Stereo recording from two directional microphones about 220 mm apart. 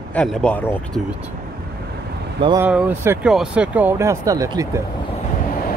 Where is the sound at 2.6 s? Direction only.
5° right (ahead or behind).